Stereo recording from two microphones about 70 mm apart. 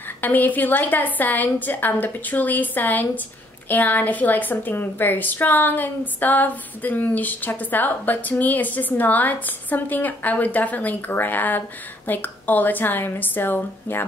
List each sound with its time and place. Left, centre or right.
0.2 s a woman's voice: left